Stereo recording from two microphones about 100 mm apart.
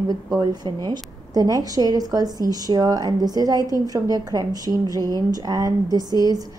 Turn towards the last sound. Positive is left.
turn(degrees=-40)  # may be behind; listen again after turning